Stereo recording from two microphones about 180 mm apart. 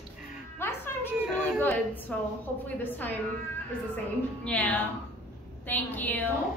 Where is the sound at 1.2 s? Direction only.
5° right (ahead or behind).